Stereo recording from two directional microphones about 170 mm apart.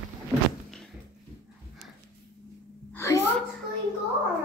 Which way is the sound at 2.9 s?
15° left (ahead or behind).